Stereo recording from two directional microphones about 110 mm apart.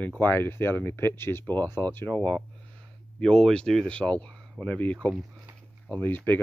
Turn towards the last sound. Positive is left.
turn(degrees=15)  # may be behind; listen again after turning